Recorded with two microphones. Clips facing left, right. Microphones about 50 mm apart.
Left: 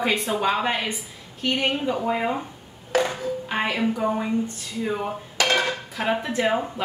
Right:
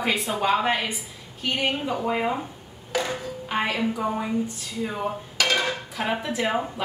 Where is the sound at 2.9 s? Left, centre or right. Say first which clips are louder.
Left 4 dB; left.